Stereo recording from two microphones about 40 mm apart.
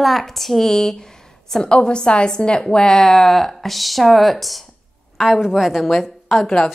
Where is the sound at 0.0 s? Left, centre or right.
Centre.